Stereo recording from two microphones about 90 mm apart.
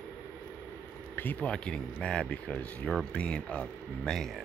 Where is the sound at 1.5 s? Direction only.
10° left (ahead or behind).